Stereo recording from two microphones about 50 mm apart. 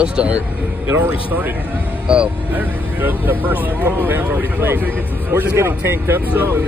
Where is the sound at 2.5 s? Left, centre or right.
Right.